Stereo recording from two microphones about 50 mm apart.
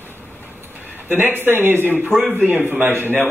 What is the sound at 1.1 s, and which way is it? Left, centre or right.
Speech, right.